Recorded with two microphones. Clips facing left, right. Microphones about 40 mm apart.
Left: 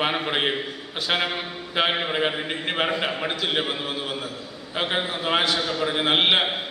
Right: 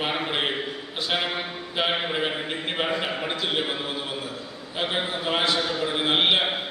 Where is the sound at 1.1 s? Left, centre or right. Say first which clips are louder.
Left 3 dB; left.